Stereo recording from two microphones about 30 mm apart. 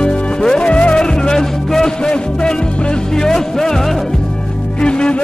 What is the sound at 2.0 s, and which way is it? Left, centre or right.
Music, left.